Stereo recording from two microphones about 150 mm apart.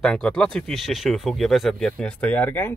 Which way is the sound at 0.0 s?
5° left (ahead or behind).